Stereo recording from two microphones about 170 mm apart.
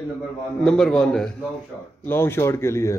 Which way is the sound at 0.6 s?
5° left (ahead or behind).